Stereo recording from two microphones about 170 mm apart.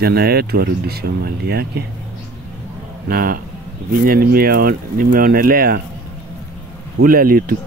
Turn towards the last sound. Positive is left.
turn(degrees=-60)  # may be behind; listen again after turning